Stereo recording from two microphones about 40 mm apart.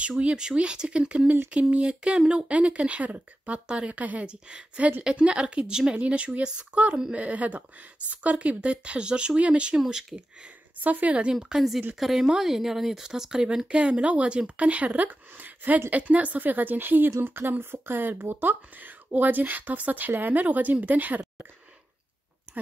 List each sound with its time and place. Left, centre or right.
0.2 s speech: right
4.3 s speech: right
9.8 s speech: centre
10.8 s speech: right
11.5 s a woman's voice: centre; by 21.5 s right